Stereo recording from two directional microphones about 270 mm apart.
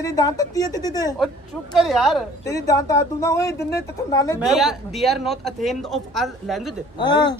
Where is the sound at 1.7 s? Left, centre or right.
Centre.